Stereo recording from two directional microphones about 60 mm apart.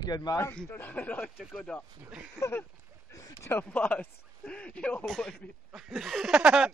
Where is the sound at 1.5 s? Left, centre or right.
Centre.